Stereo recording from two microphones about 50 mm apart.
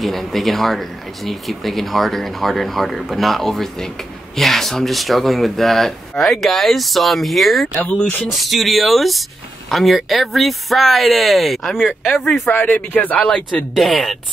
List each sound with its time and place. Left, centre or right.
0.0 s speech: centre
12.5 s speech: left
13.7 s speech: centre